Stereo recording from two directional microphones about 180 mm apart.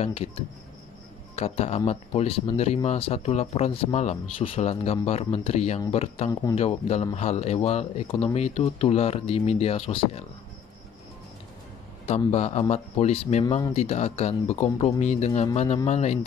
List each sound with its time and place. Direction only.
0.0 s speech: 35° left (ahead or behind)
1.3 s speech: 35° left (ahead or behind)
12.3 s speech: 35° left (ahead or behind)